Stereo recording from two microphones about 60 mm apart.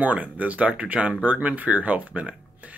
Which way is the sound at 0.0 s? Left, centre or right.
Right.